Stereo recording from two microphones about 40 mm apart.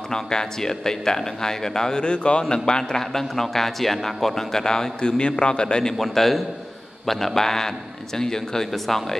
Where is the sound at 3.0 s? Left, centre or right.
Centre; by 5.9 s left.